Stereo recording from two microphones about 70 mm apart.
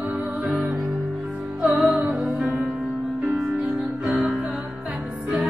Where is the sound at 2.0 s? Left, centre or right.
Centre.